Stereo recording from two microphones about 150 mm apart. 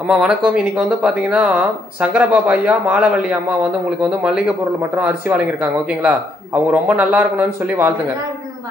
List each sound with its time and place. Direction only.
0.1 s speech: 5° right (ahead or behind)